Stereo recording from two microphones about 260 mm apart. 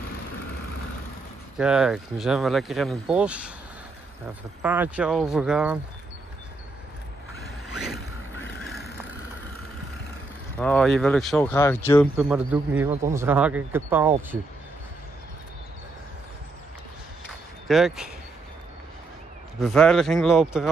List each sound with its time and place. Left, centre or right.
1.6 s speech: centre
4.6 s speech: centre
7.7 s boat: centre
8.5 s vehicle: centre
10.6 s speech: centre
12.2 s speech: centre
17.6 s speech: centre
19.6 s speech: centre